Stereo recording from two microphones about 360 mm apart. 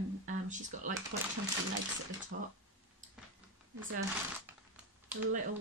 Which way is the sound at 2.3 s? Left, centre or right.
Right.